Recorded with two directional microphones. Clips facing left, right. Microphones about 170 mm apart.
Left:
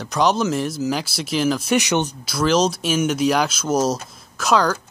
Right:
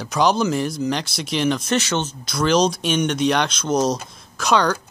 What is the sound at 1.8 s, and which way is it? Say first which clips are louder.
Speech: left 3 dB; 15° left (ahead or behind).